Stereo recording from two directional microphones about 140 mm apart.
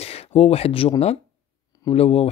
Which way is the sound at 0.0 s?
45° left (ahead or behind).